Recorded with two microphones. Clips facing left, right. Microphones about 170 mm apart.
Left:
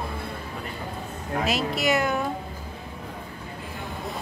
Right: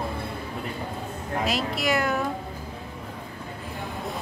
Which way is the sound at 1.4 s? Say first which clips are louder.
Left 2 dB; centre (ahead or behind).